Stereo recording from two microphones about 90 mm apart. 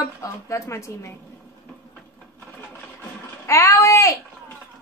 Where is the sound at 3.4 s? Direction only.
30° left (ahead or behind).